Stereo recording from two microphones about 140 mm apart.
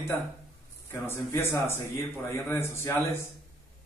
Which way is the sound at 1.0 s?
15° left (ahead or behind).